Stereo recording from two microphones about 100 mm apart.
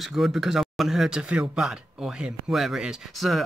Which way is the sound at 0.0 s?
Centre (ahead or behind).